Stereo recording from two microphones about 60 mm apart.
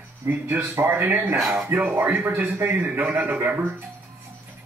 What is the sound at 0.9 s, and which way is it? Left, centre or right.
A man's voice, right.